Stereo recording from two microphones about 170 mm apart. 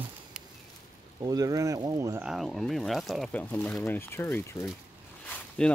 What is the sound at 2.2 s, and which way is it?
Speech, centre (ahead or behind).